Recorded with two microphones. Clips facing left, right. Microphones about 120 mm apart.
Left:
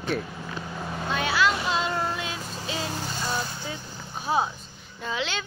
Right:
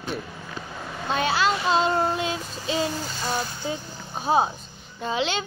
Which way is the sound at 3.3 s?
25° right (ahead or behind).